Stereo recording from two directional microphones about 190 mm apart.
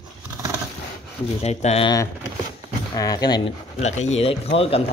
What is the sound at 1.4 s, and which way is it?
Speech, 35° left (ahead or behind).